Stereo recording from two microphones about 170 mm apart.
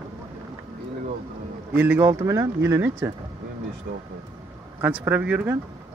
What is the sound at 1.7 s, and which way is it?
Speech, 10° right (ahead or behind).